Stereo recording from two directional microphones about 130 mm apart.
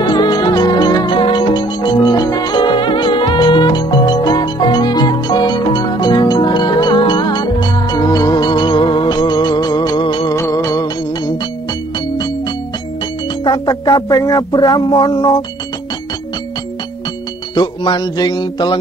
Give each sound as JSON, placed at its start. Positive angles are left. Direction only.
{"t": 0.0, "sound": "music", "side_deg": 35}
{"t": 10.3, "sound": "music", "side_deg": 20}
{"t": 13.4, "sound": "speech", "side_deg": 35}
{"t": 17.6, "sound": "music", "side_deg": 35}